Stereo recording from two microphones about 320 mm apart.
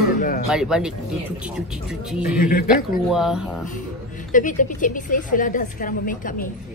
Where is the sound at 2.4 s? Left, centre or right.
Left.